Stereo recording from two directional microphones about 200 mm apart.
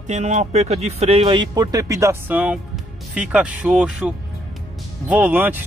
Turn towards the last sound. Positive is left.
turn(degrees=-10)  # may be behind; listen again after turning